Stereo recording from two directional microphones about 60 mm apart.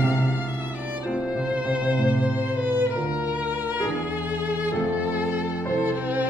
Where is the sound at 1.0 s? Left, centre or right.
Right.